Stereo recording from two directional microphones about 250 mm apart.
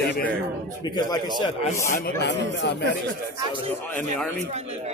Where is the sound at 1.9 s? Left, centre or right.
Left.